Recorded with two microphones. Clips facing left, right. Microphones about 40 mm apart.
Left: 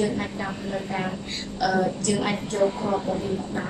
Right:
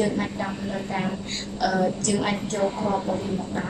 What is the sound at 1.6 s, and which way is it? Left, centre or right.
A woman's voice, centre.